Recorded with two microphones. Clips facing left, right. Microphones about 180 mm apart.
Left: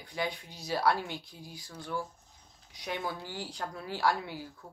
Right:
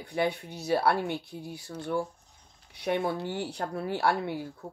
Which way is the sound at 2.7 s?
60° right (ahead or behind).